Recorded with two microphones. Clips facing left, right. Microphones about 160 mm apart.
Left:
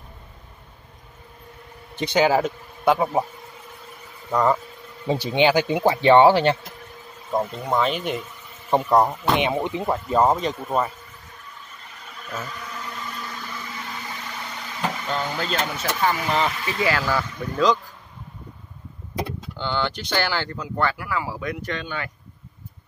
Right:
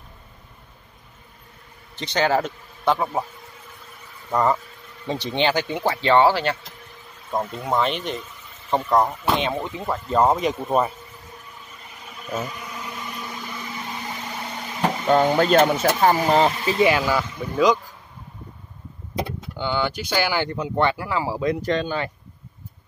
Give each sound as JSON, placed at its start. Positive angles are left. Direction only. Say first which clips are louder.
{"t": 2.0, "sound": "speech", "louder": "left 2 dB", "side_deg": 10}
{"t": 4.3, "sound": "speech", "louder": "even", "side_deg": 0}
{"t": 5.0, "sound": "speech", "louder": "left 3 dB", "side_deg": 10}
{"t": 7.5, "sound": "speech", "louder": "even", "side_deg": 0}
{"t": 10.0, "sound": "speech", "louder": "right 2 dB", "side_deg": 0}
{"t": 12.3, "sound": "blender", "louder": "right 4 dB", "side_deg": -15}
{"t": 15.0, "sound": "speech", "louder": "right 14 dB", "side_deg": -50}
{"t": 16.5, "sound": "speech", "louder": "right 5 dB", "side_deg": -25}
{"t": 19.5, "sound": "speech", "louder": "right 2 dB", "side_deg": -10}